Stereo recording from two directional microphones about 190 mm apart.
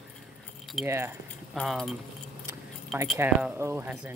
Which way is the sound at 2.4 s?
15° right (ahead or behind).